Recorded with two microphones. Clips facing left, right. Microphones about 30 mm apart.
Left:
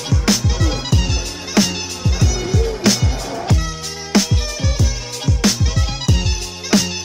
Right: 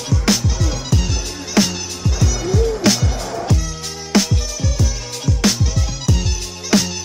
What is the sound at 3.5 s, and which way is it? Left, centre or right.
Music, centre.